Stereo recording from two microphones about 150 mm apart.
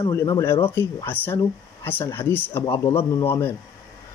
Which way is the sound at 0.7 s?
15° left (ahead or behind).